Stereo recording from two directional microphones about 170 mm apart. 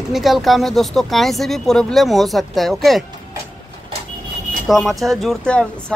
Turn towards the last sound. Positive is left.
turn(degrees=5)  # may be behind; listen again after turning